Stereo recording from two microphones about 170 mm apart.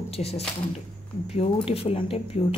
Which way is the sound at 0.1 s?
35° left (ahead or behind).